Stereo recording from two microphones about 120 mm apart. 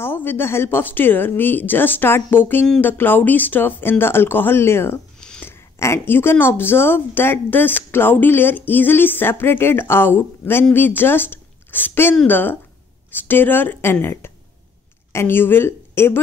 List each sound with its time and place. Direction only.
0.0 s a woman's voice: 15° left (ahead or behind)